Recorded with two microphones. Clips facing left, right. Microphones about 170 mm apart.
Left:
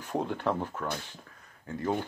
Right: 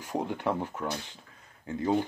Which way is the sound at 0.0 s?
15° right (ahead or behind).